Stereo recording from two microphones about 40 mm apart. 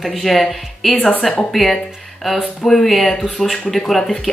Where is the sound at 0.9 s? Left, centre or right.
Left.